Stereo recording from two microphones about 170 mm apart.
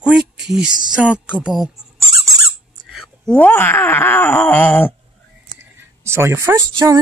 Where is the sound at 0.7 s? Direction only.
25° right (ahead or behind).